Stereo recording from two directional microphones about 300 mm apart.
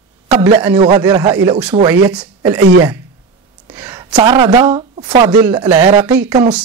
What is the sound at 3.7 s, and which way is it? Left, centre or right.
A woman's voice, centre.